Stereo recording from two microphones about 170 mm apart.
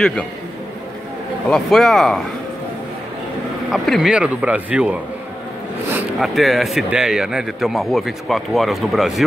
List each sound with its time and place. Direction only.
0.0 s a man's voice: 5° left (ahead or behind)
1.5 s speech: centre (ahead or behind)
3.7 s speech: centre (ahead or behind)
6.1 s speech: centre (ahead or behind)